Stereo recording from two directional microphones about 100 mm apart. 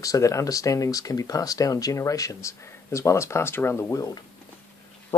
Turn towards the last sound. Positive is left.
turn(degrees=25)  # may be behind; listen again after turning